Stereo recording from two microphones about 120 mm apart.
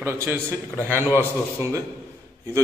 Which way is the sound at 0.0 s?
20° right (ahead or behind).